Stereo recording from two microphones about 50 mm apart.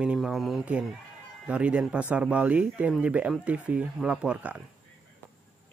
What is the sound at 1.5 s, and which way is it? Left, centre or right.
Speech, right.